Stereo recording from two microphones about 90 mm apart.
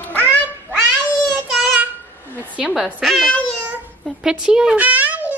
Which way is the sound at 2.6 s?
10° right (ahead or behind).